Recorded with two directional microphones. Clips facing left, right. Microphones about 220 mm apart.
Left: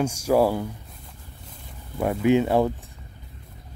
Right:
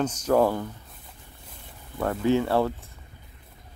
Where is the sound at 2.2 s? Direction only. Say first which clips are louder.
Left 3 dB; 15° left (ahead or behind).